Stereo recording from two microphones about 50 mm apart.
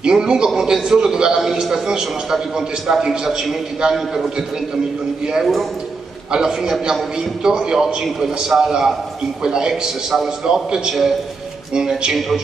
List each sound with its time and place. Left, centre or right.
0.0 s a man's voice: centre